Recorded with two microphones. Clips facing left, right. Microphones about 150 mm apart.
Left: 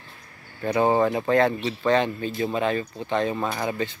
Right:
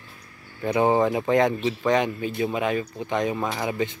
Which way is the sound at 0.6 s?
15° right (ahead or behind).